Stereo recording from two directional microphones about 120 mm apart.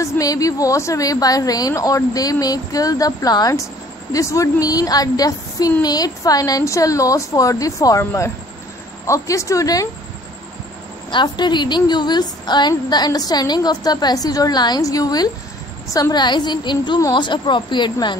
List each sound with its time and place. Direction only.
0.0 s a woman's voice: 30° left (ahead or behind)
11.1 s a woman's voice: 40° left (ahead or behind)